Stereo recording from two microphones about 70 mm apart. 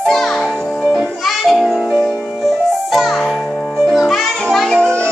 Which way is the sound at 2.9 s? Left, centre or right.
Centre.